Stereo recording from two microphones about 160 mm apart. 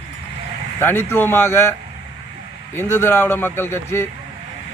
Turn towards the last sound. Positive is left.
turn(degrees=15)  # may be behind; listen again after turning